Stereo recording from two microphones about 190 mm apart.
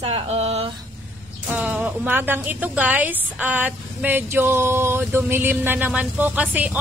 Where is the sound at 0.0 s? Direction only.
35° right (ahead or behind).